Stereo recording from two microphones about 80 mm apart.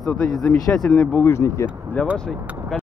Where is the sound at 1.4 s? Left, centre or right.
Left.